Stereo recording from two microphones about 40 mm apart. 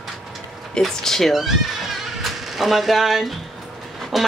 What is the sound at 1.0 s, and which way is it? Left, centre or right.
Speech, centre.